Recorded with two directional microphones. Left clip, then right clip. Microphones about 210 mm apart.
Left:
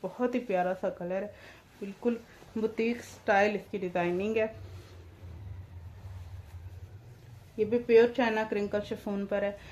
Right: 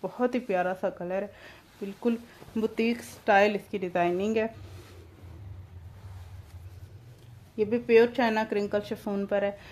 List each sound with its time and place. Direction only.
0.0 s speech: 40° right (ahead or behind)
7.5 s speech: 40° right (ahead or behind)